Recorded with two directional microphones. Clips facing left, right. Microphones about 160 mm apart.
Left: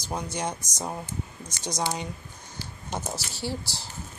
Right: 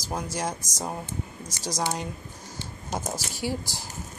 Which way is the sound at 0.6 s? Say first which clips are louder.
Right 3 dB; 90° right.